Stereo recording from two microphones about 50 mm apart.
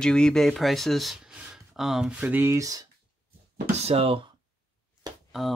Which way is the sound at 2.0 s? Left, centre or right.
Right.